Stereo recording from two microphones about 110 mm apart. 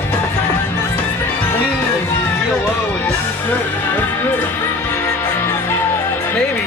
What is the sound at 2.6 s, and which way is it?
Music, 20° left (ahead or behind).